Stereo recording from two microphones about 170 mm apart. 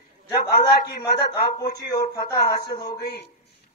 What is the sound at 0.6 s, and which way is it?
Speech, 70° left (ahead or behind).